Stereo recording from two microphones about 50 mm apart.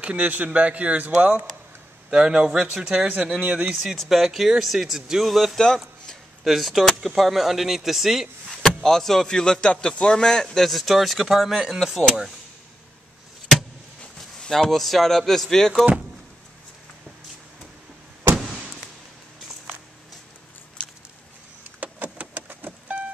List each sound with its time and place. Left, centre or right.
0.0 s speech: right
2.0 s speech: centre
4.0 s speech: centre
8.6 s speech: centre
10.6 s speech: centre
14.5 s speech: centre
21.8 s power windows: right